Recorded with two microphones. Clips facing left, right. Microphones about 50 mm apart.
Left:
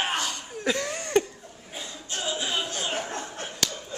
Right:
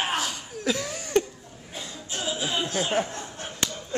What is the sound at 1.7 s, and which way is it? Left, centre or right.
Chuckle, centre.